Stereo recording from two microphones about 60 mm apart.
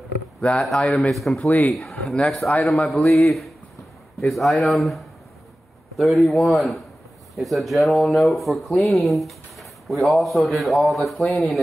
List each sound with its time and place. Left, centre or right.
0.4 s speech: centre
0.7 s speech: centre
1.5 s speech: left
1.8 s a sound: centre
2.2 s speech: centre